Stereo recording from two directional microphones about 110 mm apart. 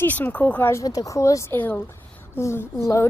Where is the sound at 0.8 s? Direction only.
30° left (ahead or behind).